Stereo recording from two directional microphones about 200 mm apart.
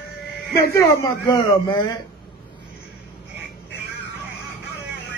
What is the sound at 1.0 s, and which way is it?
Speech, 20° left (ahead or behind).